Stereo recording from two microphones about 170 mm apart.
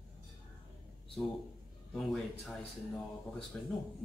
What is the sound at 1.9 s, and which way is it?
Speech, centre (ahead or behind).